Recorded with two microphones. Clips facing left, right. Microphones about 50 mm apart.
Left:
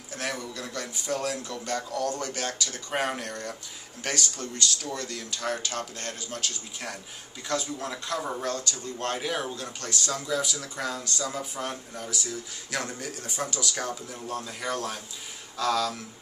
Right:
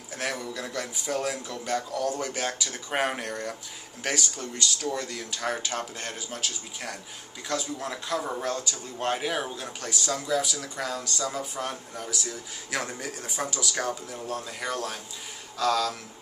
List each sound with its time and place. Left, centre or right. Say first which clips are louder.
0.1 s a man's voice: right 1 dB; centre